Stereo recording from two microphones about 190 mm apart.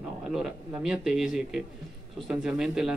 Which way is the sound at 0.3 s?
5° right (ahead or behind).